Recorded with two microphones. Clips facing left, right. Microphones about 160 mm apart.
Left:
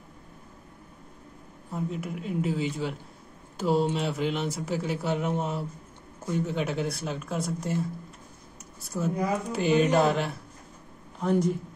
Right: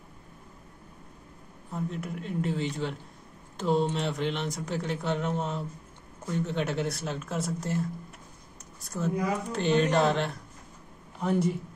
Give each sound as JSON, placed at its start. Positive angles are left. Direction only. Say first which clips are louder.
{"t": 1.7, "sound": "speech", "louder": "left 2 dB", "side_deg": 5}